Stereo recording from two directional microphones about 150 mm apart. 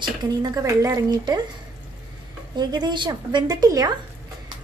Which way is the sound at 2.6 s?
30° right (ahead or behind).